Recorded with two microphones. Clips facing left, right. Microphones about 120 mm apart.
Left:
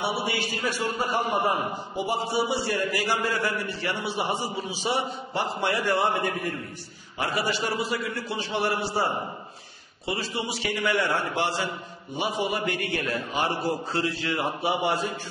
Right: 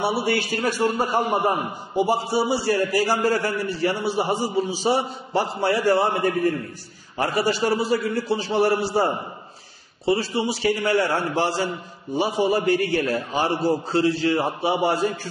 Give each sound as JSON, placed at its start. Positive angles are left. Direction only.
{"t": 0.0, "sound": "a man's voice", "side_deg": -40}